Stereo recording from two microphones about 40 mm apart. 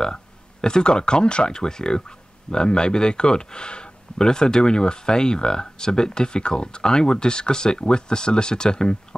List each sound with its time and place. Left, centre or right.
0.0 s speech: centre